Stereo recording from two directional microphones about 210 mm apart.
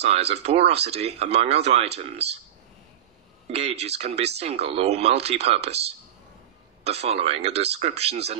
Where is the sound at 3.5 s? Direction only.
30° right (ahead or behind).